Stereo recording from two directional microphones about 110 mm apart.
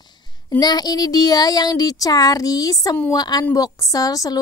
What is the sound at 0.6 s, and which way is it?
A woman's voice, 40° left (ahead or behind).